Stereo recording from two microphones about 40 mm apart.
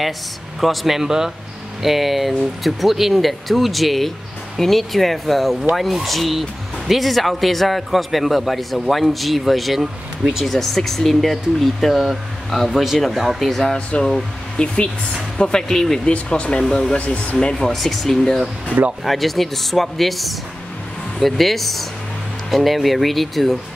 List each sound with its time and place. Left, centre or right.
0.6 s speech: centre
13.4 s speech: centre
14.6 s speech: left
15.7 s speech: centre
16.1 s speech: left
17.4 s speech: centre
17.6 s speech: centre